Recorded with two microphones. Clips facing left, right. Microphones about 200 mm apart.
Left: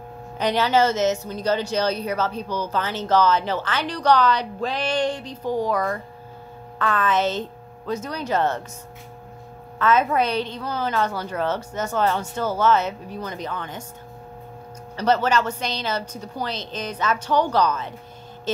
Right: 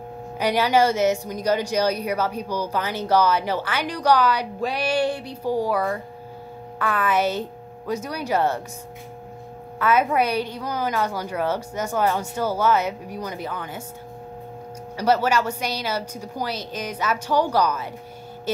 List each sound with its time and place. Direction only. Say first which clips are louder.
0.4 s speech: even; 10° right (ahead or behind)
9.8 s speech: even; 10° right (ahead or behind)
15.0 s speech: even; 10° right (ahead or behind)